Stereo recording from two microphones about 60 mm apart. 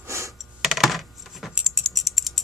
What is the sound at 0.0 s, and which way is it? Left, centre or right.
Computer keyboard, right.